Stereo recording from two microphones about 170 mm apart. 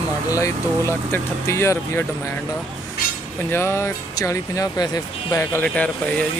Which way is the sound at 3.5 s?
15° left (ahead or behind).